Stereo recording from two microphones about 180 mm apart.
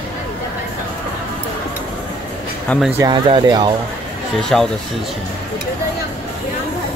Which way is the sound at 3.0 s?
25° right (ahead or behind).